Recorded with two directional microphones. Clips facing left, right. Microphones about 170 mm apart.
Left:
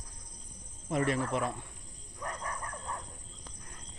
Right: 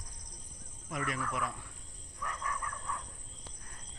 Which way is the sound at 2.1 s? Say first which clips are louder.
Left 1 dB; 35° left (ahead or behind).